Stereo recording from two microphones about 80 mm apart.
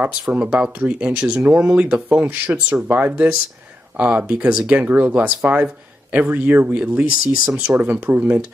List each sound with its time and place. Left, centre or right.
0.3 s speech: centre